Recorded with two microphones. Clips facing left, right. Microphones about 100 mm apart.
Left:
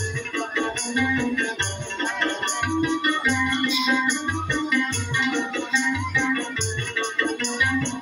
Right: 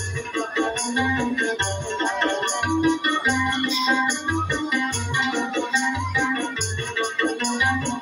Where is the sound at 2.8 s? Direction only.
20° right (ahead or behind).